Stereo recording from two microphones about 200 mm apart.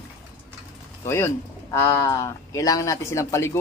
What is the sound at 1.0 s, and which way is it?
Speech, 15° left (ahead or behind).